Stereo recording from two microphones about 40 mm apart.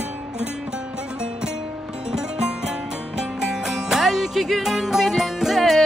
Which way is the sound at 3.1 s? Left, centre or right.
Centre.